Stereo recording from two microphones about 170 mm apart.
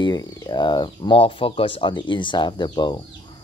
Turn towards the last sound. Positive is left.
turn(degrees=25)  # may be behind; listen again after turning